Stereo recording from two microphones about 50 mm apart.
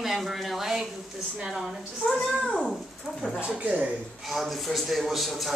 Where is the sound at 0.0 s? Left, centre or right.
Centre.